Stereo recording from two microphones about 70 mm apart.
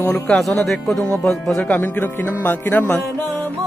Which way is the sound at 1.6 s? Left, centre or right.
Left.